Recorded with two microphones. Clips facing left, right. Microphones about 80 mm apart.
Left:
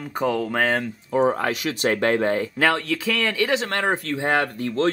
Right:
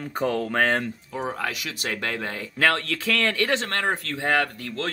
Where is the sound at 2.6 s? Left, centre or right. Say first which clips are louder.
Right 1 dB; centre.